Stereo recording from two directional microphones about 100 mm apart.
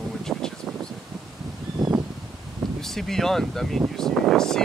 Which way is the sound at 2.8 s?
5° left (ahead or behind).